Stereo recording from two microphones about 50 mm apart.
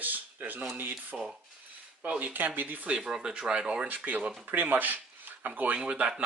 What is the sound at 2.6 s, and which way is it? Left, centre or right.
Speech, right.